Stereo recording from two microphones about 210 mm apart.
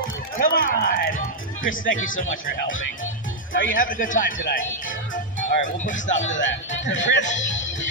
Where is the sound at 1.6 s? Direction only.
70° left (ahead or behind).